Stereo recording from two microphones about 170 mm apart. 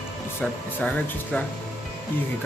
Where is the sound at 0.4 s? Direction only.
10° left (ahead or behind).